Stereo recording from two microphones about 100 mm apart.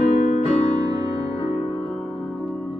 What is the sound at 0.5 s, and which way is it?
Music, 90° left.